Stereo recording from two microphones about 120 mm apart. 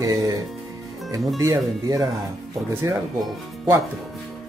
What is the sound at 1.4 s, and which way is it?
Speech, 30° right (ahead or behind).